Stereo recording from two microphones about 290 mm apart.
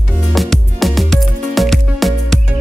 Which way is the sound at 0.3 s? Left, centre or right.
Centre.